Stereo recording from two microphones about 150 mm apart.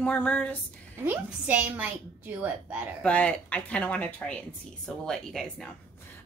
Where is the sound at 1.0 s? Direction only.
10° right (ahead or behind).